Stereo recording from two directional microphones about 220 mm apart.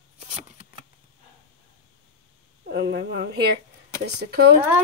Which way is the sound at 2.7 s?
50° right (ahead or behind).